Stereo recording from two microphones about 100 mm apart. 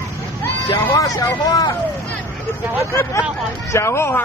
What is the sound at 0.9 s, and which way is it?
Speech, 40° left (ahead or behind).